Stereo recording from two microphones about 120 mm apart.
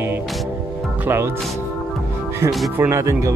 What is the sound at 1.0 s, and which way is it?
Speech, 20° right (ahead or behind).